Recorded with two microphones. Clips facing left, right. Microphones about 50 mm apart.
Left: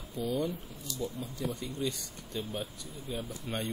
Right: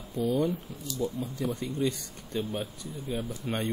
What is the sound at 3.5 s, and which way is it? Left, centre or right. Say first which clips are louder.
Speech: right 4 dB; right.